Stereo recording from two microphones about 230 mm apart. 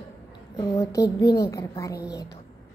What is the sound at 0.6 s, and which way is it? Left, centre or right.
A woman's voice, centre.